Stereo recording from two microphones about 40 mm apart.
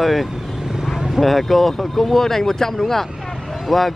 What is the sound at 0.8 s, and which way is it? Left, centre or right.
Vehicle, centre.